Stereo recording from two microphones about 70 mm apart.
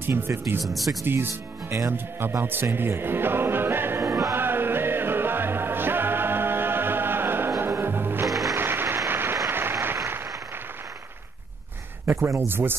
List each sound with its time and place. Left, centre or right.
0.0 s speech: right
0.7 s speech: centre
1.0 s speech: right
4.4 s music: right
8.3 s music: centre
8.5 s applause: right
12.1 s speech: right
12.4 s speech: right